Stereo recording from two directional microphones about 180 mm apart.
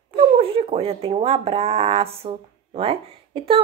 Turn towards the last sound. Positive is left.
turn(degrees=-30)  # may be behind; listen again after turning